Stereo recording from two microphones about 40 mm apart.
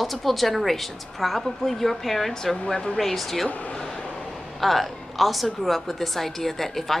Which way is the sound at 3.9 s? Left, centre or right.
Left.